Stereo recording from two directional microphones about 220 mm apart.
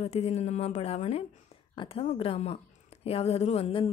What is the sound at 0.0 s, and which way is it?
A woman's voice, 30° left (ahead or behind).